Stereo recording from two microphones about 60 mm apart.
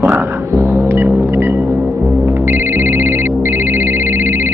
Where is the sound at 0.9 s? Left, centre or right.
Right.